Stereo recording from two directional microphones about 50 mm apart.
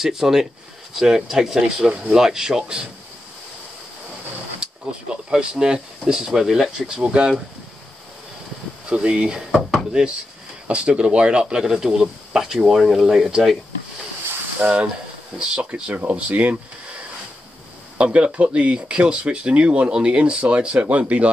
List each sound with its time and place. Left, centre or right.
0.0 s speech: centre
5.3 s speech: centre
8.8 s speech: centre
9.4 s speech: centre
10.7 s speech: right; by 13.6 s centre
14.6 s speech: right
15.3 s speech: centre
17.9 s speech: right